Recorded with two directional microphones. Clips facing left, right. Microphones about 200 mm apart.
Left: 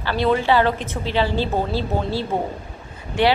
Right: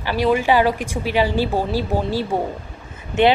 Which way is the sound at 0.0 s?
15° right (ahead or behind).